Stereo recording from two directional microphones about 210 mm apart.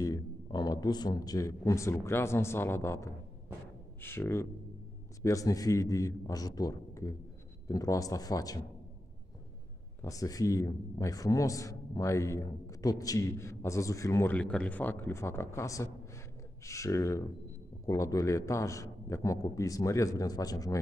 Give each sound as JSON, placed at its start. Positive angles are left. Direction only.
{"t": 0.0, "sound": "a man's voice", "side_deg": 15}
{"t": 10.0, "sound": "a man's voice", "side_deg": 15}